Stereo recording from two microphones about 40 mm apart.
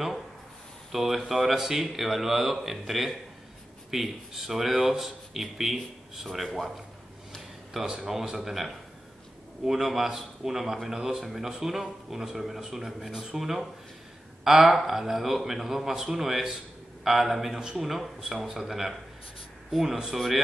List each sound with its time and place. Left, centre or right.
0.9 s speech: centre
7.7 s a man's voice: centre
17.6 s a man's voice: centre
17.8 s a man's voice: centre